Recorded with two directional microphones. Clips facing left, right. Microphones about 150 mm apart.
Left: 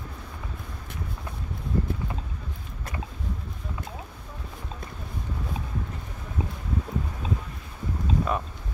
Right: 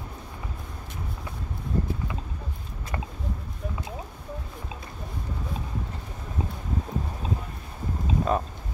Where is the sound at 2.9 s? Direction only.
60° right (ahead or behind).